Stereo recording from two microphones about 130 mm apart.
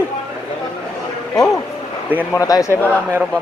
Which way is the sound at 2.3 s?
25° left (ahead or behind).